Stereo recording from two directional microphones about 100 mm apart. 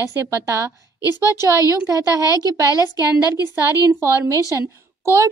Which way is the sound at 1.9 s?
35° right (ahead or behind).